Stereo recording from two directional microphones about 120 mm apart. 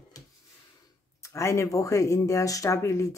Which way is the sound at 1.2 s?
25° left (ahead or behind).